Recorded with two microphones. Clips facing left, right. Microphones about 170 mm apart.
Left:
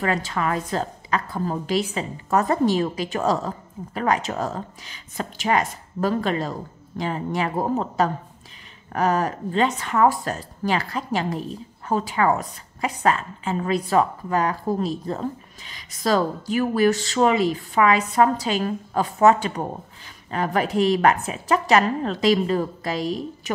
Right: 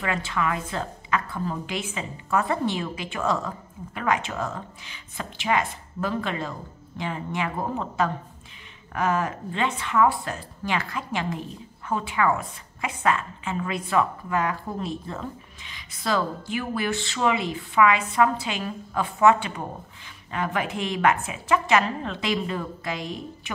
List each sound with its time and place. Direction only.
0.0 s speech: 40° left (ahead or behind)